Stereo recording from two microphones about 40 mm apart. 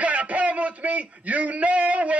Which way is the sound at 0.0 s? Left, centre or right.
Right.